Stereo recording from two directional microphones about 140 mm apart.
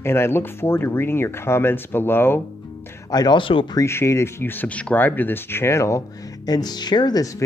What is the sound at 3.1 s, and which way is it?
Speech, 30° left (ahead or behind).